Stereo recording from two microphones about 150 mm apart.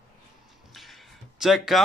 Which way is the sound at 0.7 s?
Centre (ahead or behind).